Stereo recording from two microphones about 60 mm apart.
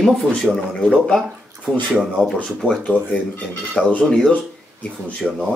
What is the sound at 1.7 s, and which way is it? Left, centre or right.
Speech, centre.